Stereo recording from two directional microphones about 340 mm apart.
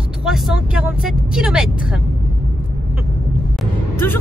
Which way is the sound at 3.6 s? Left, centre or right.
Centre.